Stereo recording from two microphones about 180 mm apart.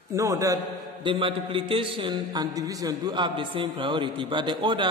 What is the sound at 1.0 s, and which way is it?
A man's voice, 30° right (ahead or behind).